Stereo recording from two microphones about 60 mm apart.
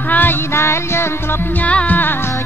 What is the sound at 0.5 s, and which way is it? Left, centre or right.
Music, left.